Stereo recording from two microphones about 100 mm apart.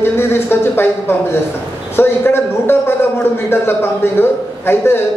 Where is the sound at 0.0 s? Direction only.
25° left (ahead or behind).